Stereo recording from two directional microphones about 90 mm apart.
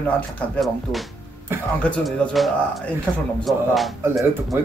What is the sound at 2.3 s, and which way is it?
Speech, centre (ahead or behind).